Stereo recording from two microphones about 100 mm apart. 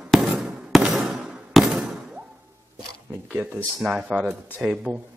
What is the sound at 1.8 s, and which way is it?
Knock, 10° right (ahead or behind).